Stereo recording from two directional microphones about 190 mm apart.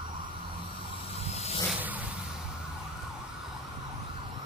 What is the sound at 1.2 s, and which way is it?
Vehicle, 35° left (ahead or behind).